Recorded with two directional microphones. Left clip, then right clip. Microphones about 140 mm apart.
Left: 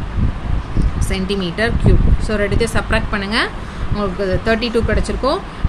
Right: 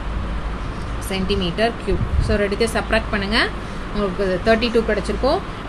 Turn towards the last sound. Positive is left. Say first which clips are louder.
# left 1 dB
turn(degrees=45)  # may be behind; listen again after turning